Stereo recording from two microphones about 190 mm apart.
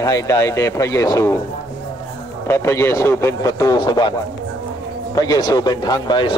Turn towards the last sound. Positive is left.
turn(degrees=25)  # may be behind; listen again after turning